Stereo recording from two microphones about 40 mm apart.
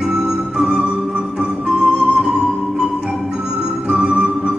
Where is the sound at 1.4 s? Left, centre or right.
Centre.